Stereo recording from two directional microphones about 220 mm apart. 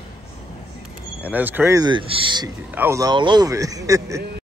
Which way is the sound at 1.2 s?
10° right (ahead or behind).